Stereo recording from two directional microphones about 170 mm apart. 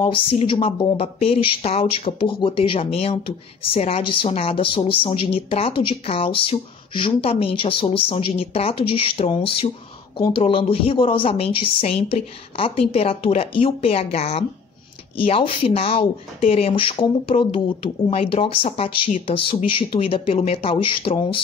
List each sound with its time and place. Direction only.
0.0 s speech: 30° left (ahead or behind)